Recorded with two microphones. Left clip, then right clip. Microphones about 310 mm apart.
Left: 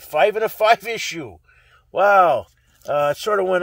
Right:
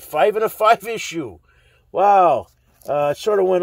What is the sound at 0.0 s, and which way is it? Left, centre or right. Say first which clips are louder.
A man's voice: even; left.